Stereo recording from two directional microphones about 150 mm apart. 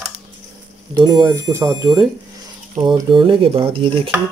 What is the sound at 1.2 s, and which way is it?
Speech, 20° right (ahead or behind).